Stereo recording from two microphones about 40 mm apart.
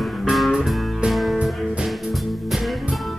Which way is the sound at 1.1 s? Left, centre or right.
Centre.